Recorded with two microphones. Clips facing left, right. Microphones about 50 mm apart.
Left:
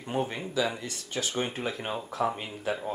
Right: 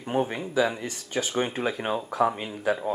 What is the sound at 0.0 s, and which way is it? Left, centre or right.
Speech, right.